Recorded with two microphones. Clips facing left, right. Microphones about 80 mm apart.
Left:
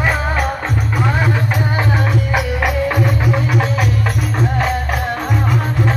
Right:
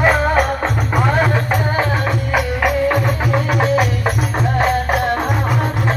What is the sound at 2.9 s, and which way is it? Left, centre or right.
Music, centre.